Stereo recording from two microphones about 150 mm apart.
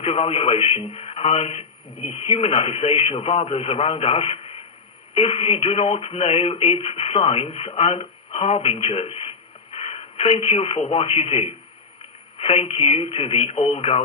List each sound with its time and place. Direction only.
0.0 s a man's voice: 40° left (ahead or behind)